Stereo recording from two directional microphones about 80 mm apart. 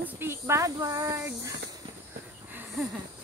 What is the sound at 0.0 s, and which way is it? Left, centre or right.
Speech, right.